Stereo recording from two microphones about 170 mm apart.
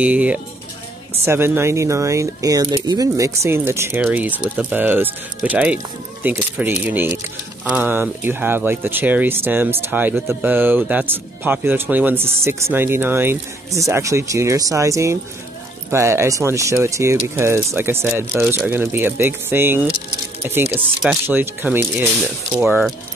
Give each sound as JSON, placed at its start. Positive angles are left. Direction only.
{"t": 0.0, "sound": "speech", "side_deg": -10}